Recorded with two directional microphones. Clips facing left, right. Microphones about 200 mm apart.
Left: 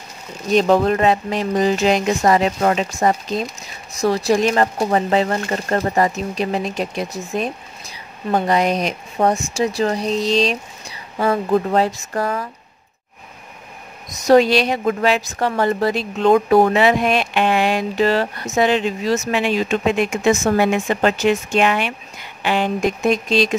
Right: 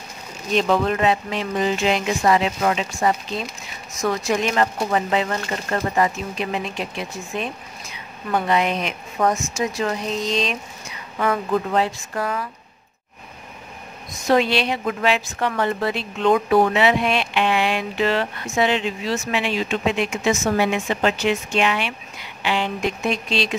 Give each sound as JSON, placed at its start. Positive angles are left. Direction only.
{"t": 0.6, "sound": "a woman's voice", "side_deg": 40}
{"t": 14.2, "sound": "a woman's voice", "side_deg": 40}